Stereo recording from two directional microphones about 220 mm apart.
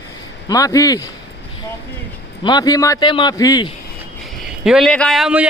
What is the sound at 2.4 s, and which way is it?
A man's voice, 20° left (ahead or behind).